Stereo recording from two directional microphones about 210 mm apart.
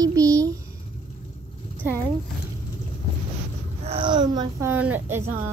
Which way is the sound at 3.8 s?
30° right (ahead or behind).